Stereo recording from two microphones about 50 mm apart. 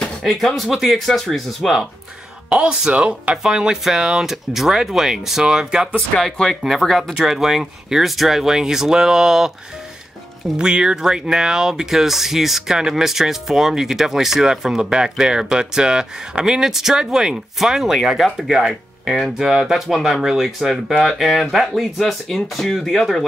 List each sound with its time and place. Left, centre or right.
0.3 s speech: centre
0.9 s speech: centre
2.5 s speech: centre
3.4 s speech: centre
6.4 s speech: centre
7.2 s speech: centre
10.6 s speech: centre